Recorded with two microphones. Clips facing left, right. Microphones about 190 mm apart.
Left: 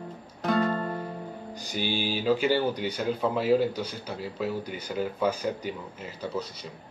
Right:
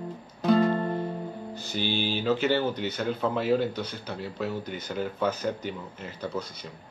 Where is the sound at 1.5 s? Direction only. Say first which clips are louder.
Even; 15° left (ahead or behind).